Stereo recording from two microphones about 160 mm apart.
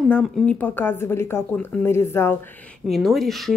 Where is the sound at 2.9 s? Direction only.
Centre (ahead or behind).